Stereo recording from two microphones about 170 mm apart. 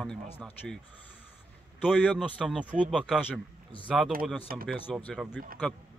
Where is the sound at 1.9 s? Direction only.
5° right (ahead or behind).